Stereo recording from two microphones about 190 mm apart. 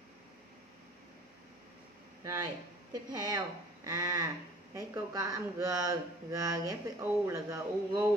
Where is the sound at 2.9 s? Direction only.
20° right (ahead or behind).